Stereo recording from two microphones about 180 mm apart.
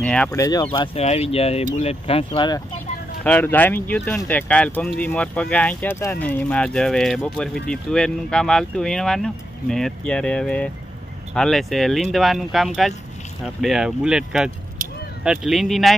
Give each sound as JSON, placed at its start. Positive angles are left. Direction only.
{"t": 0.0, "sound": "speech", "side_deg": 5}
{"t": 0.3, "sound": "speech", "side_deg": 20}
{"t": 0.7, "sound": "speech", "side_deg": 35}
{"t": 3.3, "sound": "speech", "side_deg": 10}